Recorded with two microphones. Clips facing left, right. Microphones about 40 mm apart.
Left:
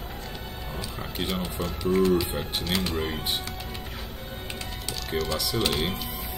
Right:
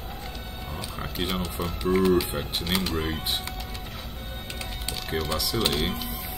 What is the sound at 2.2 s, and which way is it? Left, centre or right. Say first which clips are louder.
Speech: even; centre.